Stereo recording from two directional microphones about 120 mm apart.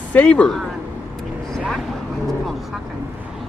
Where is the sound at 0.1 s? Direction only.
10° left (ahead or behind).